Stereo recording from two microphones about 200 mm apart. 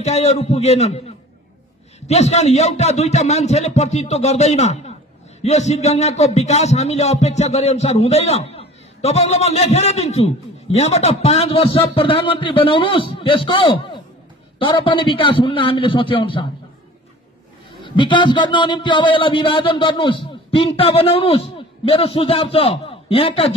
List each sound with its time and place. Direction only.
0.0 s a man's voice: 35° left (ahead or behind)
2.0 s a man's voice: 30° left (ahead or behind)
17.8 s a man's voice: 25° left (ahead or behind)